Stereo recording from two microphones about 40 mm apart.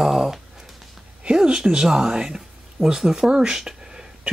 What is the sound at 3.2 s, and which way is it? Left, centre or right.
Speech, centre.